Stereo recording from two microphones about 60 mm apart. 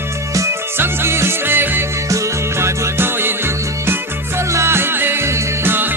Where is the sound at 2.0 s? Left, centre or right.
Right.